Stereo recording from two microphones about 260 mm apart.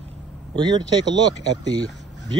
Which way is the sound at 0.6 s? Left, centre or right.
Centre.